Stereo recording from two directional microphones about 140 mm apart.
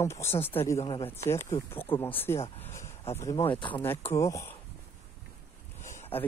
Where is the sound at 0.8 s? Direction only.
40° left (ahead or behind).